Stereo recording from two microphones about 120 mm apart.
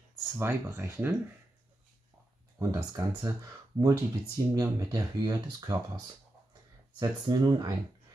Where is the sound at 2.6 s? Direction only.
30° right (ahead or behind).